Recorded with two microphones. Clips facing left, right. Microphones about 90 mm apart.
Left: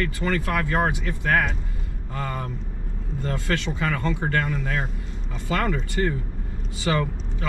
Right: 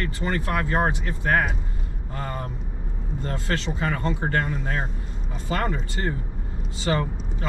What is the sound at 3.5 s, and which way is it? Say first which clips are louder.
Speech: even; 15° right (ahead or behind).